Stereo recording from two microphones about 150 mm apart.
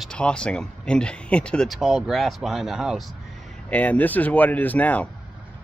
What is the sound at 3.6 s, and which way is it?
Speech, 10° left (ahead or behind).